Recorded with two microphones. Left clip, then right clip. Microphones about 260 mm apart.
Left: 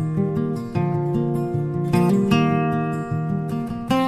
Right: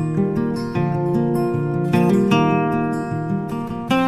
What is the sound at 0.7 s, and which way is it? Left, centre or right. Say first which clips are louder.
Music: right 2 dB; left.